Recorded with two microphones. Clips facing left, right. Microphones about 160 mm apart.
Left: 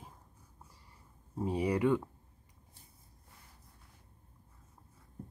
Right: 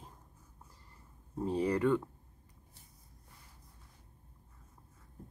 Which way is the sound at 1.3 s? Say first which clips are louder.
Even; 10° left (ahead or behind).